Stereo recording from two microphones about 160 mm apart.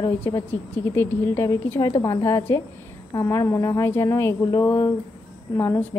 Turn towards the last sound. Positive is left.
turn(degrees=15)  # may be behind; listen again after turning